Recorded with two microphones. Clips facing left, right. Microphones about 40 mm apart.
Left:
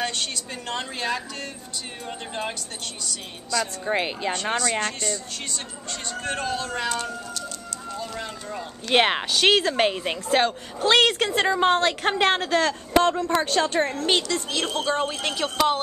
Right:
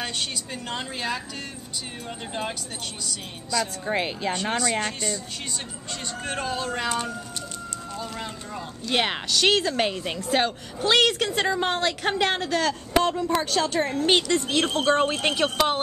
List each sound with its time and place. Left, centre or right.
0.0 s a woman's voice: centre
4.6 s a woman's voice: centre
6.2 s a woman's voice: centre
8.9 s speech: left
10.3 s speech: centre
13.9 s a woman's voice: centre
14.9 s speech: right
15.3 s a woman's voice: centre